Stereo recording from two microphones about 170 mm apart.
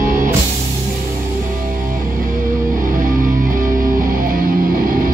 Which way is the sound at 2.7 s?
50° right (ahead or behind).